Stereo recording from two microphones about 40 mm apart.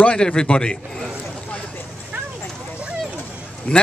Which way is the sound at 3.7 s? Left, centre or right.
Left.